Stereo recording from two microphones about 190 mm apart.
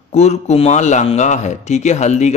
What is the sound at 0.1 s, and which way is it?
Speech, 35° left (ahead or behind).